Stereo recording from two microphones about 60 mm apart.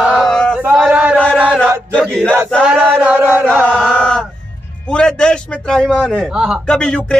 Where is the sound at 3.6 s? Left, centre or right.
Centre.